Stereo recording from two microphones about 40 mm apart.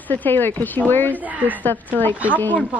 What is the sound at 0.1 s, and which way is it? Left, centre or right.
Speech, left.